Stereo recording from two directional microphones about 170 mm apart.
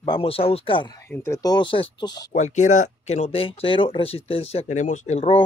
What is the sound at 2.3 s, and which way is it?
Speech, 45° left (ahead or behind).